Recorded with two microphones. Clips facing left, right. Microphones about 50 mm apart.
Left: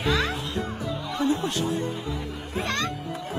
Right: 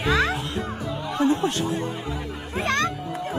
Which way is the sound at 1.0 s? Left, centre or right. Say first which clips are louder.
Right 4 dB; right.